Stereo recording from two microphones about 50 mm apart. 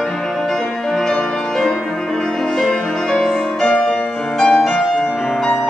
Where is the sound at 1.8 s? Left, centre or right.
Centre.